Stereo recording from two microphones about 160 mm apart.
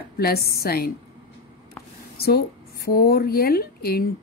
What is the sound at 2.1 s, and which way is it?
A woman's voice, 75° left (ahead or behind).